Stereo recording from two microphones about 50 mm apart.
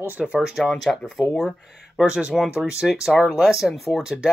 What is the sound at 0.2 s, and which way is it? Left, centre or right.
Speech, centre.